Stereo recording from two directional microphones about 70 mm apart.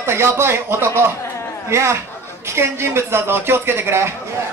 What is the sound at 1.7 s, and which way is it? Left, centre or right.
A man's voice, right.